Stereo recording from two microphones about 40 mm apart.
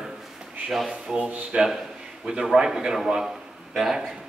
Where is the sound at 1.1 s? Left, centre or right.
Right; by 4.1 s centre.